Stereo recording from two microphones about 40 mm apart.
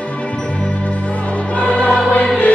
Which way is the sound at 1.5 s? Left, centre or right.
Left.